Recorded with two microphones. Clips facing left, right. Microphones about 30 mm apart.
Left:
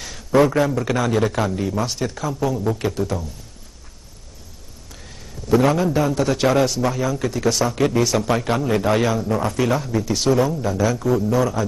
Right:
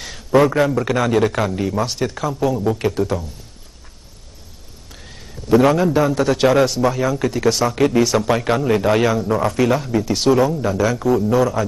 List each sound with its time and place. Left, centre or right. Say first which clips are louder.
0.5 s a man's voice: right 2 dB; centre
5.0 s a man's voice: right 1 dB; centre